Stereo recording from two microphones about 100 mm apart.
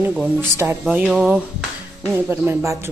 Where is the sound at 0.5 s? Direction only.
25° right (ahead or behind).